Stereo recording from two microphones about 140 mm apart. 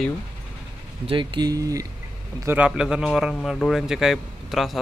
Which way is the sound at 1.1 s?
35° right (ahead or behind).